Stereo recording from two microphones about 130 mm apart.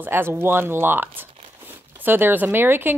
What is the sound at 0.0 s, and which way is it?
Speech, 15° right (ahead or behind).